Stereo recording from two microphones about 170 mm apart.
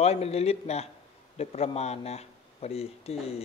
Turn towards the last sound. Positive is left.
turn(degrees=35)  # may be behind; listen again after turning